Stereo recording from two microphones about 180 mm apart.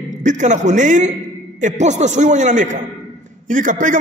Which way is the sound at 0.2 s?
45° right (ahead or behind).